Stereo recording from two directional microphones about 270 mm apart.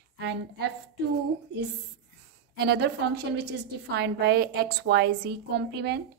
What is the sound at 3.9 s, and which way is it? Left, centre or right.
A woman's voice, right.